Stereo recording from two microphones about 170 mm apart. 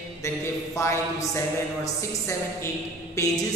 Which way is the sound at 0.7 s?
15° left (ahead or behind).